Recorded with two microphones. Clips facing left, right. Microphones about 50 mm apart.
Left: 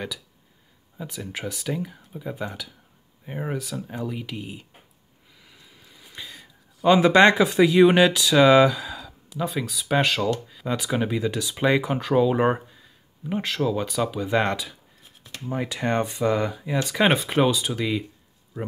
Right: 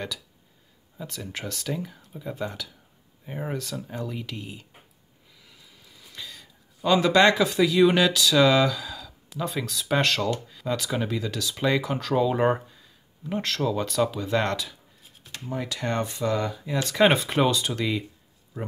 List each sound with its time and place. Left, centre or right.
0.9 s speech: centre
5.4 s a sound: centre
9.5 s speech: centre